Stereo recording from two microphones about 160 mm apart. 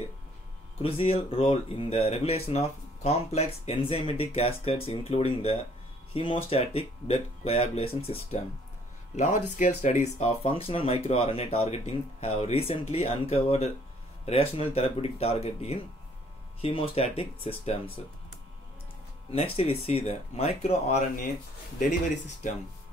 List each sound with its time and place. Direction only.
0.8 s speech: 35° left (ahead or behind)
9.1 s speech: 50° left (ahead or behind)
19.3 s speech: 35° left (ahead or behind)
22.4 s speech: 55° left (ahead or behind)